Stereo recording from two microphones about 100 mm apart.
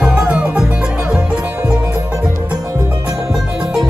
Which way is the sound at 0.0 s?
10° right (ahead or behind).